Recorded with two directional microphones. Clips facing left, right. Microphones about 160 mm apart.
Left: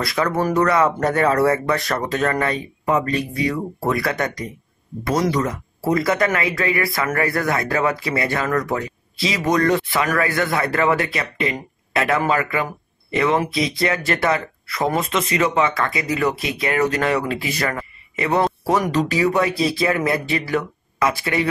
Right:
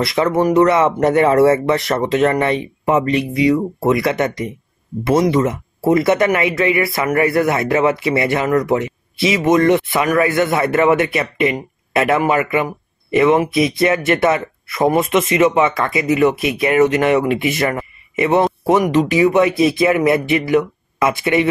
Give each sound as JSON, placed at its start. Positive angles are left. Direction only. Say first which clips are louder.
{"t": 0.0, "sound": "speech", "louder": "right 5 dB", "side_deg": -20}